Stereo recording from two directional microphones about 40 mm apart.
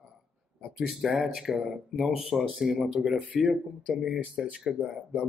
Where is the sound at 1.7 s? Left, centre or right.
Centre.